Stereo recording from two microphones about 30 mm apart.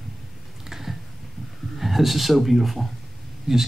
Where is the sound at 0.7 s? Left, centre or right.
Centre.